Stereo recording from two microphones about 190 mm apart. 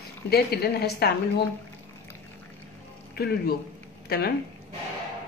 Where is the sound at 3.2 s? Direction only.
55° left (ahead or behind).